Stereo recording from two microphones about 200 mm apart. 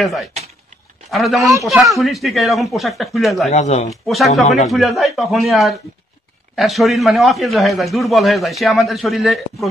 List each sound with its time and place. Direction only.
0.0 s a man's voice: centre (ahead or behind)
3.4 s speech: 35° left (ahead or behind)
3.9 s a man's voice: centre (ahead or behind)
4.3 s speech: 35° left (ahead or behind)
4.6 s a man's voice: centre (ahead or behind)